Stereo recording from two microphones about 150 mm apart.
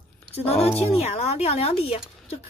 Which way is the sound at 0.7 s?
40° left (ahead or behind).